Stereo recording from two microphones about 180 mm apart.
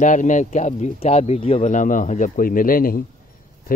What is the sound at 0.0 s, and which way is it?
Speech, 45° left (ahead or behind).